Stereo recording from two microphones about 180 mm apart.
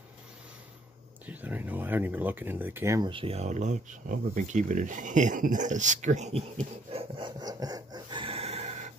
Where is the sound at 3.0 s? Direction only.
30° right (ahead or behind).